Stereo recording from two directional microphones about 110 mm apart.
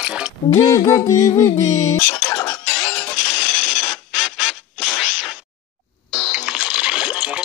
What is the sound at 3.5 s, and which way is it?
Mechanisms, centre (ahead or behind).